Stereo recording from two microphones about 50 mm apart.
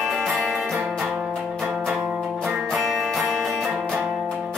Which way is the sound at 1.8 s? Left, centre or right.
Centre.